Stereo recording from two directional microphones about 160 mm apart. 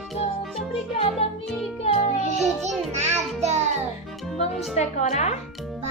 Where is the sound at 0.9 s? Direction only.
35° left (ahead or behind).